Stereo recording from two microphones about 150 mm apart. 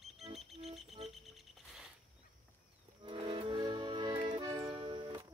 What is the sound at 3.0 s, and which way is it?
Accordion, 35° right (ahead or behind).